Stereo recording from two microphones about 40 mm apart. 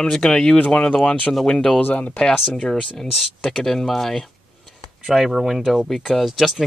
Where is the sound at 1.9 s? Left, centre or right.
Left.